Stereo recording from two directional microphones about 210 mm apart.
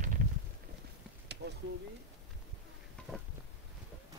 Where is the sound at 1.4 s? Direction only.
50° right (ahead or behind).